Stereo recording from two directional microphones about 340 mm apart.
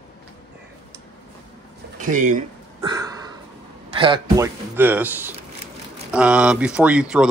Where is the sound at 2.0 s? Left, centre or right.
Right.